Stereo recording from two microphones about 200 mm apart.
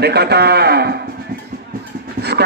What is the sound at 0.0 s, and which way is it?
Speech, 55° right (ahead or behind).